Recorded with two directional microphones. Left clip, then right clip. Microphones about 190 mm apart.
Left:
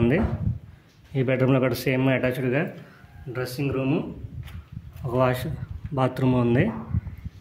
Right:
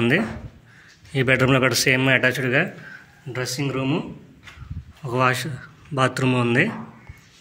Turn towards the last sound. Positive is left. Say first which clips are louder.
# right 3 dB
turn(degrees=15)  # may be behind; listen again after turning